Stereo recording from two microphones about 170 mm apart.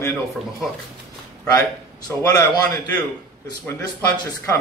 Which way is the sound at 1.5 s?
20° left (ahead or behind).